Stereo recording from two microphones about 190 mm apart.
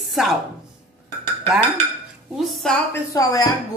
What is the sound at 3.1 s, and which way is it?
Chopping, 20° left (ahead or behind).